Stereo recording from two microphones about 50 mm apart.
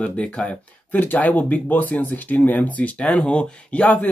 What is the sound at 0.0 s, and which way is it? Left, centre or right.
Speech, centre.